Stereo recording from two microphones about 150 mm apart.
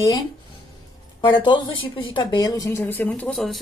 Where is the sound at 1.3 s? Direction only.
35° left (ahead or behind).